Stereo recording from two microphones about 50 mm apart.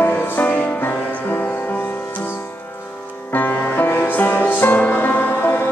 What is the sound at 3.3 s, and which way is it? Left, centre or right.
Music, left.